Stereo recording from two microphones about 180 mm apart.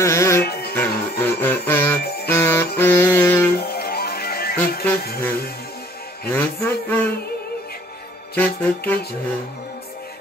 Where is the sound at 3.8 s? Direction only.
60° left (ahead or behind).